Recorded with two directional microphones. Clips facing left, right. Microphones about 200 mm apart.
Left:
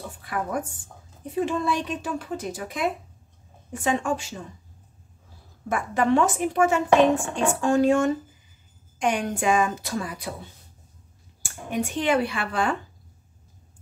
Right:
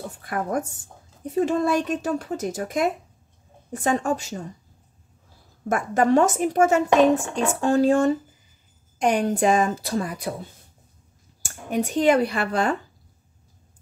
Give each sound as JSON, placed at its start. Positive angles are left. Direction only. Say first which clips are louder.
{"t": 0.2, "sound": "a woman's voice", "louder": "right 2 dB", "side_deg": -45}
{"t": 5.7, "sound": "a woman's voice", "louder": "right 3 dB", "side_deg": -45}
{"t": 11.4, "sound": "a woman's voice", "louder": "right 3 dB", "side_deg": -40}